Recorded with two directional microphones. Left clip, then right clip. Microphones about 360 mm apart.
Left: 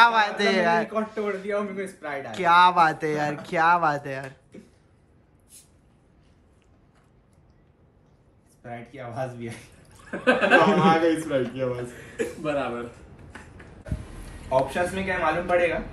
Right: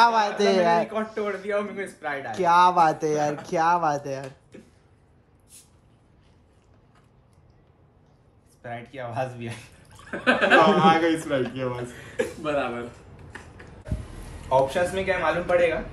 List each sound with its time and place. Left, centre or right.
0.0 s a man's voice: centre
9.2 s speech: centre